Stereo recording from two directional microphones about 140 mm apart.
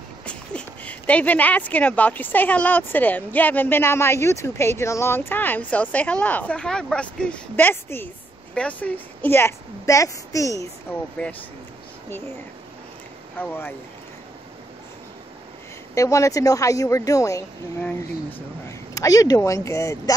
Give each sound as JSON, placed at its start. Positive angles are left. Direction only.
{"t": 0.2, "sound": "speech", "side_deg": 10}
{"t": 11.2, "sound": "speech", "side_deg": 10}
{"t": 13.4, "sound": "speech", "side_deg": 15}
{"t": 15.9, "sound": "speech", "side_deg": 20}
{"t": 18.9, "sound": "speech", "side_deg": 25}